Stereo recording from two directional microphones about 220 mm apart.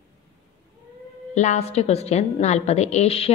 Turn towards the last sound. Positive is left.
turn(degrees=25)  # may be behind; listen again after turning